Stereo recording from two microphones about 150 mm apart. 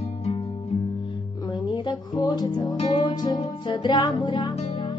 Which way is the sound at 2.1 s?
30° left (ahead or behind).